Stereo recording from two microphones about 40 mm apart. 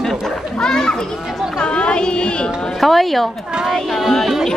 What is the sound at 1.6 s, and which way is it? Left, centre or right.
Speech, left.